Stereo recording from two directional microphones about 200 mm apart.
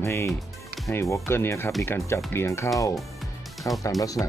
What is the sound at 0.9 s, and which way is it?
Speech, 15° left (ahead or behind).